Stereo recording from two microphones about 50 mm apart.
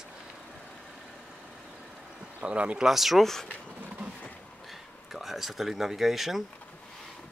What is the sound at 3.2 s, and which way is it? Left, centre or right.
Speech, centre.